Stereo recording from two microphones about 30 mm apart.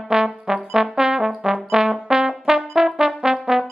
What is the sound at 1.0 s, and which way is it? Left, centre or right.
Trombone, centre.